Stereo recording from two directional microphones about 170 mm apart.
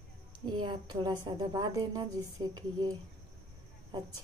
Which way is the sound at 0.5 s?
25° right (ahead or behind).